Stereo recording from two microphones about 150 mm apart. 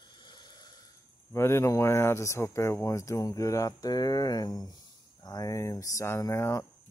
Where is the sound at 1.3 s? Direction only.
15° left (ahead or behind).